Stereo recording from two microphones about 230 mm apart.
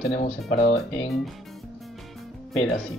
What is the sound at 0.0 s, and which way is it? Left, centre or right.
Speech, left.